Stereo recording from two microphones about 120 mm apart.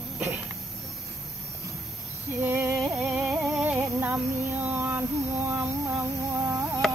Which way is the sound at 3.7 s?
15° right (ahead or behind).